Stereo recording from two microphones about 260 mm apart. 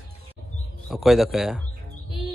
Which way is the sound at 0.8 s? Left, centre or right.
Centre.